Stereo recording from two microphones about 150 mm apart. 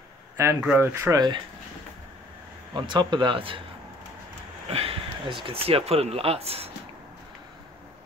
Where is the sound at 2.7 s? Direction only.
30° right (ahead or behind).